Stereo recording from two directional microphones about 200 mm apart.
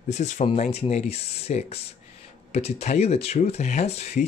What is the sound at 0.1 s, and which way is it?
Speech, 35° left (ahead or behind).